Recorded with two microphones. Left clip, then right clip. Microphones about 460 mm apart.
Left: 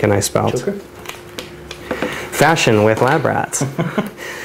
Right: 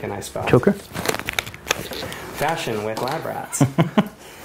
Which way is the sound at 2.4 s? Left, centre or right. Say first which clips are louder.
Left 11 dB; left.